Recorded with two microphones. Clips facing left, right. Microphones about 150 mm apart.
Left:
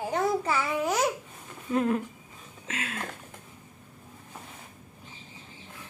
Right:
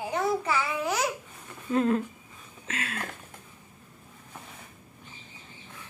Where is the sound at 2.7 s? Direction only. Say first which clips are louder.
Even; 20° left (ahead or behind).